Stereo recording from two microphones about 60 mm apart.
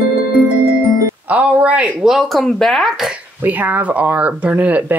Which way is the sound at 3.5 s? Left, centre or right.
Right.